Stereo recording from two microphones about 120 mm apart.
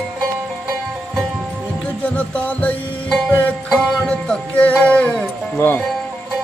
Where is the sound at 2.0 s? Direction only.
10° left (ahead or behind).